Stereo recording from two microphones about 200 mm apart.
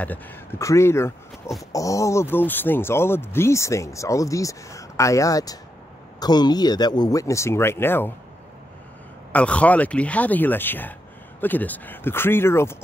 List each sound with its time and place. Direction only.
0.0 s speech: 10° left (ahead or behind)
9.3 s speech: 5° left (ahead or behind)